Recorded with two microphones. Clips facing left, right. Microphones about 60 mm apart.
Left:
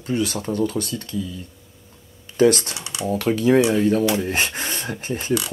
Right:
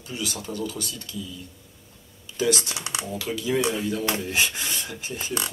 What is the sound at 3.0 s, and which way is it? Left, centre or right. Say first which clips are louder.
Speech: left 11 dB; left.